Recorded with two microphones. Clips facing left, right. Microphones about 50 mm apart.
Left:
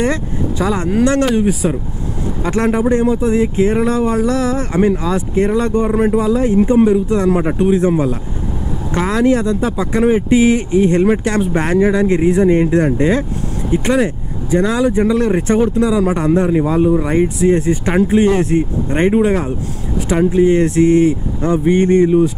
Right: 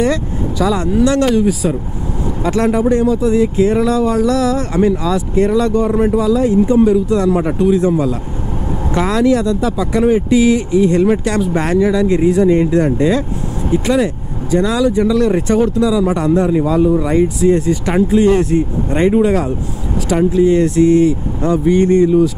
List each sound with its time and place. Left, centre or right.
0.0 s speech: left
5.9 s speech: centre
6.1 s speech: left
20.2 s speech: left